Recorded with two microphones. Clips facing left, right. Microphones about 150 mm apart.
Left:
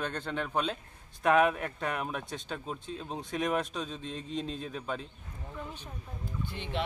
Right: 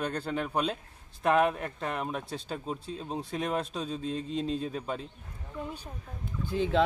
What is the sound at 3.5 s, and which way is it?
Speech, 35° right (ahead or behind).